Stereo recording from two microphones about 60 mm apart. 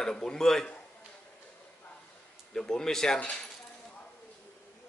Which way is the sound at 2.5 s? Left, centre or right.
Centre.